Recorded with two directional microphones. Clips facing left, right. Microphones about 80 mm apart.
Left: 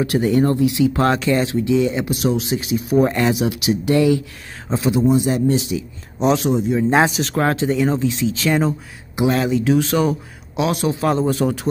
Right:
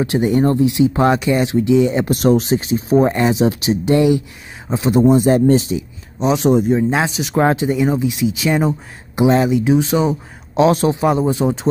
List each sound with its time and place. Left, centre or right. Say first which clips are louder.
0.0 s speech: right 2 dB; right
2.0 s speech: right 6 dB; right
3.0 s speech: right 2 dB; right
4.9 s a man's voice: right 6 dB; right
6.2 s speech: right 3 dB; centre
7.3 s speech: right 4 dB; centre
10.5 s speech: right 6 dB; right
11.0 s speech: right 2 dB; centre